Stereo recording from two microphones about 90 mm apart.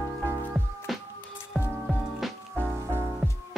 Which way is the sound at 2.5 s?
25° right (ahead or behind).